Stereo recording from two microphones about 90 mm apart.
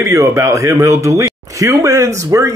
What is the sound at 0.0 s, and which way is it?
Speech, 30° right (ahead or behind).